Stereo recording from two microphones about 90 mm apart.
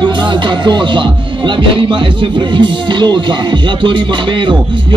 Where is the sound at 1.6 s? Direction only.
70° right (ahead or behind).